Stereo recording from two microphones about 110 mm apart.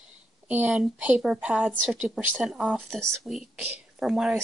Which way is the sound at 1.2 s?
5° right (ahead or behind).